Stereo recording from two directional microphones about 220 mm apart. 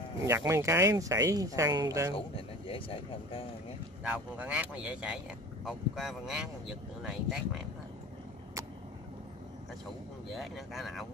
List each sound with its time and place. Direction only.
0.2 s speech: 15° right (ahead or behind)
2.1 s speech: 25° left (ahead or behind)
4.0 s speech: 5° right (ahead or behind)
10.3 s speech: centre (ahead or behind)